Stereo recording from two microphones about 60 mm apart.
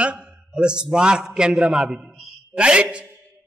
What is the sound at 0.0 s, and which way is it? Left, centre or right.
A man's voice, centre.